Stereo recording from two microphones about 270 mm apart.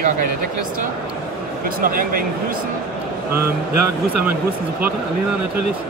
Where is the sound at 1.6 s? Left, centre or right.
Right.